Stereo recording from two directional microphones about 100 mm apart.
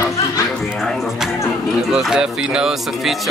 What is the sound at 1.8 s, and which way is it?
Speech, 5° right (ahead or behind).